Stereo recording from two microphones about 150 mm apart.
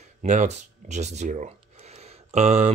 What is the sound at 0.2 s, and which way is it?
Speech, 50° right (ahead or behind).